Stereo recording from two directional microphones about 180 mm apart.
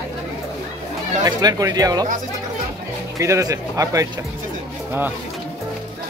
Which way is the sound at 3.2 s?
15° right (ahead or behind).